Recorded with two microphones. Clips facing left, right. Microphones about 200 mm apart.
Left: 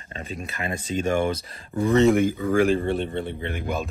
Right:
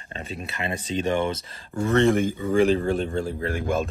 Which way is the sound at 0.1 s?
35° right (ahead or behind).